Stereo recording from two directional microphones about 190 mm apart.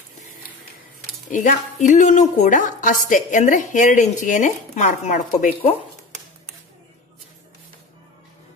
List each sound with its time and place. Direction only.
1.3 s a woman's voice: 40° left (ahead or behind)